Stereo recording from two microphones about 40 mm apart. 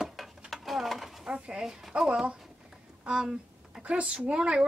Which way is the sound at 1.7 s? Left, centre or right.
Centre.